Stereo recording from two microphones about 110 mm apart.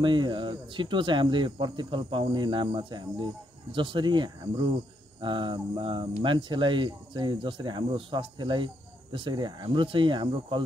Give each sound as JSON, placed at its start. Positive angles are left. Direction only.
{"t": 0.0, "sound": "speech", "side_deg": -45}